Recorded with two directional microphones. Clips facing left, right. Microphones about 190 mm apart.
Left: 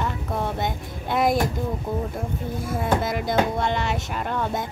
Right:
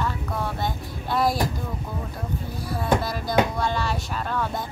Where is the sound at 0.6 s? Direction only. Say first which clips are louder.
Left 1 dB; 20° left (ahead or behind).